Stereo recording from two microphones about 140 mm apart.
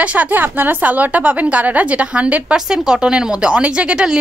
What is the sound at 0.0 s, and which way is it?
A woman's voice, 10° right (ahead or behind).